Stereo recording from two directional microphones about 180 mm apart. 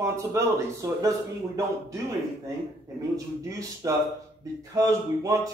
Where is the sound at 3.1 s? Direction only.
20° right (ahead or behind).